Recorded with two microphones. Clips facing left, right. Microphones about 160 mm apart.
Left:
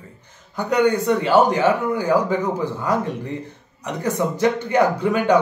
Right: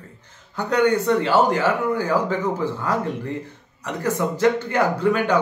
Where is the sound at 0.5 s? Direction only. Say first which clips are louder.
Left 1 dB; 15° left (ahead or behind).